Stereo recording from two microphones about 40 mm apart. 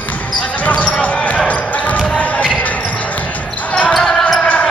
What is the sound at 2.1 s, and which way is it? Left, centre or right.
Music, left.